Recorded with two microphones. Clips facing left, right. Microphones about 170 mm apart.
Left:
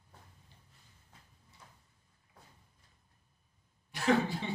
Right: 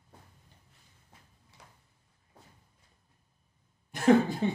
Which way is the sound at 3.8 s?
45° right (ahead or behind).